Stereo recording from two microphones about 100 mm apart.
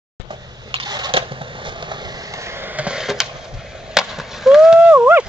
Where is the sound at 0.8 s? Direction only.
45° right (ahead or behind).